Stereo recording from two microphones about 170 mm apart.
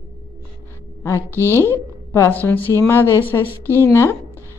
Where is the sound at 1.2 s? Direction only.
15° right (ahead or behind).